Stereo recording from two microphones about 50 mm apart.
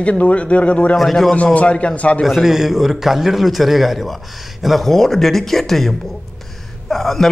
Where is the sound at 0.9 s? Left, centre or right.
Centre.